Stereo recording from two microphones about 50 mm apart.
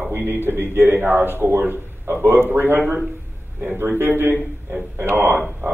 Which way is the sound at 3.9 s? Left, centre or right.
Right.